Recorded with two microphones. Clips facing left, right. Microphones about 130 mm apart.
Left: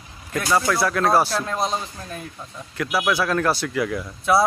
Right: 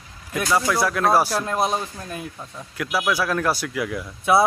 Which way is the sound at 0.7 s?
10° right (ahead or behind).